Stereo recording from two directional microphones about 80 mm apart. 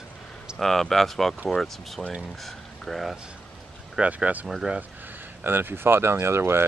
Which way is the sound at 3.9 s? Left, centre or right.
Centre.